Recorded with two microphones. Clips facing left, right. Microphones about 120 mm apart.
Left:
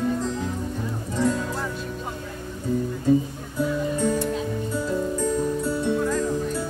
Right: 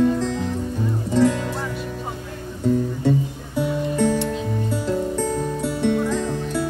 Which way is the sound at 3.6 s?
90° right.